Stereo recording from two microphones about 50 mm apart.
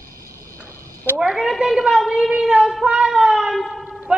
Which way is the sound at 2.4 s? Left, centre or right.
Centre.